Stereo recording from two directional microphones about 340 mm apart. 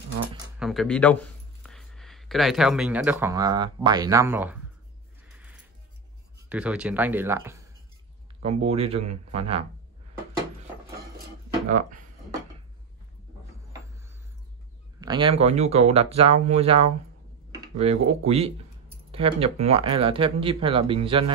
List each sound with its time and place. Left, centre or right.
0.6 s speech: centre
5.2 s music: centre
6.5 s speech: centre
8.4 s speech: centre
15.0 s speech: centre